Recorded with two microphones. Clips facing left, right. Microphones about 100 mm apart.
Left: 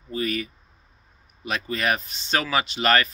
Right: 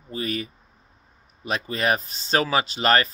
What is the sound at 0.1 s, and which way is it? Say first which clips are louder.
A man's voice: left 2 dB; 30° right (ahead or behind).